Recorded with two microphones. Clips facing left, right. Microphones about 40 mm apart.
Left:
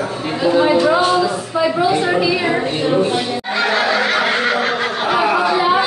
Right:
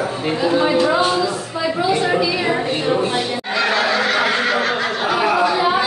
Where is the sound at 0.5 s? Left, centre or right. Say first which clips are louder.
Left 4 dB; centre.